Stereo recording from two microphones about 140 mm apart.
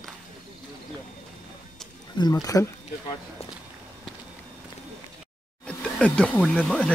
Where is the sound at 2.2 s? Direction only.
25° left (ahead or behind).